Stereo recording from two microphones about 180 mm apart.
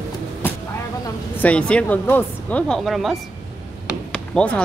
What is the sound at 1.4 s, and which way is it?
Speech, 5° left (ahead or behind).